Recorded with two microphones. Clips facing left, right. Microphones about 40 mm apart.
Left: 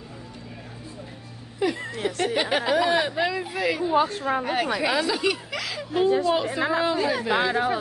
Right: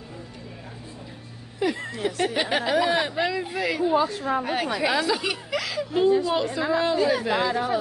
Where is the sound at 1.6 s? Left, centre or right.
Centre.